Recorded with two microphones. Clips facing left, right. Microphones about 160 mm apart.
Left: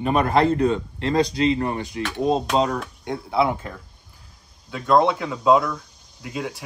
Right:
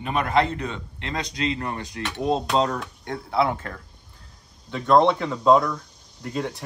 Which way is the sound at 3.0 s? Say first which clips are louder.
Left 2 dB; 15° left (ahead or behind).